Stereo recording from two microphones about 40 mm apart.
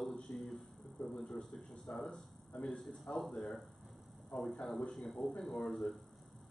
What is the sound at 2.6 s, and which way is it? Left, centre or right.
Speech, left.